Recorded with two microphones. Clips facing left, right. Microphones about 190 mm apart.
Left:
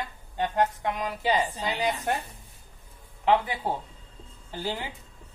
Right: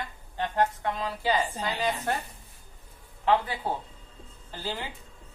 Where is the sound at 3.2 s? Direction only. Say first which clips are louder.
Left 1 dB; 15° left (ahead or behind).